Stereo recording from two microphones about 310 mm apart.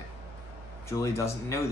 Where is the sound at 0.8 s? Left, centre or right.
Centre.